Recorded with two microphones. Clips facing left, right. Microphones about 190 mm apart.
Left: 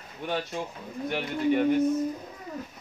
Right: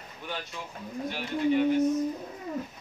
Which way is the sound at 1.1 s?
55° left (ahead or behind).